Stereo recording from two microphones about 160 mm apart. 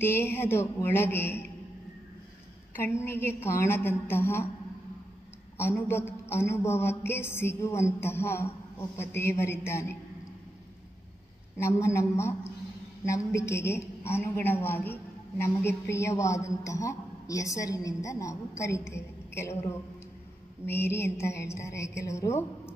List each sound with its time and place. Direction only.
0.0 s a man's voice: 15° left (ahead or behind)
2.7 s a man's voice: 15° left (ahead or behind)
5.6 s a man's voice: 15° left (ahead or behind)
11.5 s a man's voice: 15° left (ahead or behind)